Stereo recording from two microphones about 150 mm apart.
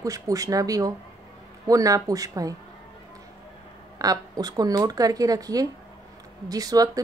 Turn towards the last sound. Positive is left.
turn(degrees=-25)  # may be behind; listen again after turning